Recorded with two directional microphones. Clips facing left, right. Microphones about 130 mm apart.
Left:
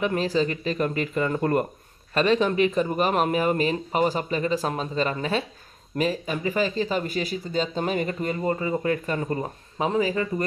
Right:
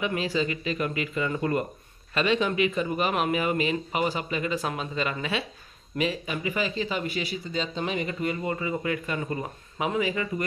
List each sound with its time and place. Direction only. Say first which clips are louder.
0.0 s speech: left 4 dB; 40° left (ahead or behind)